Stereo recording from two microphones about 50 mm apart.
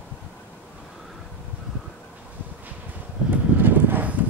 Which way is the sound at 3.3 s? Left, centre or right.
Right.